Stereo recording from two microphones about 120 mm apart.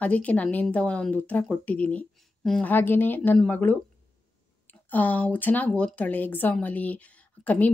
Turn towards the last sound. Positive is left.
turn(degrees=10)  # may be behind; listen again after turning